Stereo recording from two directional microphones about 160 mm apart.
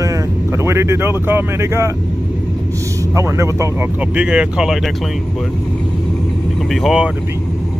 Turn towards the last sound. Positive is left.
turn(degrees=0)  # may be behind; listen again after turning